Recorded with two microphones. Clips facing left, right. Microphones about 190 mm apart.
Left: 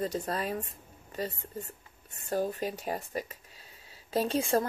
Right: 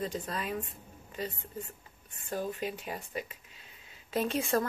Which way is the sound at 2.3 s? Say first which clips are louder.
Left 4 dB; 40° left (ahead or behind).